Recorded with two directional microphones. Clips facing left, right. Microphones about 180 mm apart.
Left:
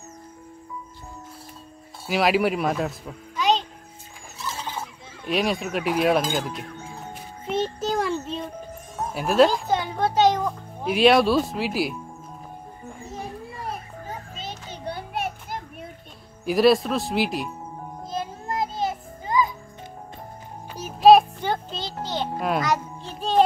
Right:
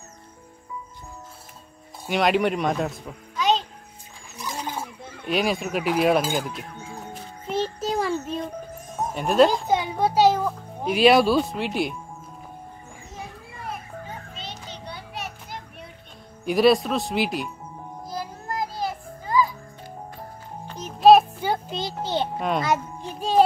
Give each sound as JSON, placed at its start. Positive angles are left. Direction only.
{"t": 2.0, "sound": "a child's voice", "side_deg": 5}
{"t": 4.4, "sound": "a sound", "side_deg": -15}
{"t": 5.2, "sound": "speech", "side_deg": 0}
{"t": 7.4, "sound": "child singing", "side_deg": 0}
{"t": 9.1, "sound": "speech", "side_deg": 5}
{"t": 9.5, "sound": "children playing", "side_deg": -15}
{"t": 14.3, "sound": "children playing", "side_deg": 50}
{"t": 16.4, "sound": "speech", "side_deg": 0}
{"t": 18.0, "sound": "music", "side_deg": 25}
{"t": 20.6, "sound": "music", "side_deg": 10}
{"t": 23.0, "sound": "music", "side_deg": -10}